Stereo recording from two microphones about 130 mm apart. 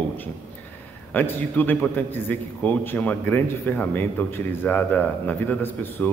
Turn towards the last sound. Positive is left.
turn(degrees=15)  # may be behind; listen again after turning